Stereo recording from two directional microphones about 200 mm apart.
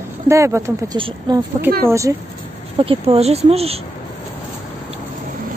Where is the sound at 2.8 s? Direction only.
30° right (ahead or behind).